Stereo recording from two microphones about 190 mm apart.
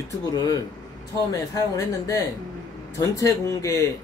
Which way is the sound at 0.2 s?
20° left (ahead or behind).